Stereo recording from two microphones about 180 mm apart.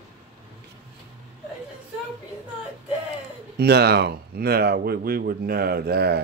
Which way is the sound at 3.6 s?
65° right (ahead or behind).